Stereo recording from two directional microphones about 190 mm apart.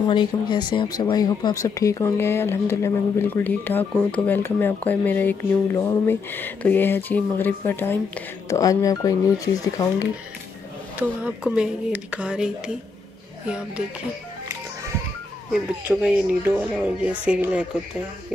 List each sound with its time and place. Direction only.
0.1 s speech: 25° left (ahead or behind)
11.0 s speech: 5° right (ahead or behind)
15.5 s speech: 5° right (ahead or behind)